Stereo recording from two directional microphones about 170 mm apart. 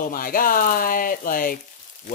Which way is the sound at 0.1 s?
55° left (ahead or behind).